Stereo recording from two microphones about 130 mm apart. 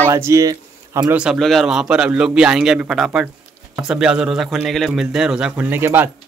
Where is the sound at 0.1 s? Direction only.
20° right (ahead or behind).